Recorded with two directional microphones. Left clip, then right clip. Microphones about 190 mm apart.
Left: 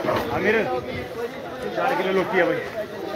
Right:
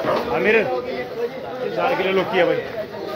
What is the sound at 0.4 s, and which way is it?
Speech, 5° right (ahead or behind).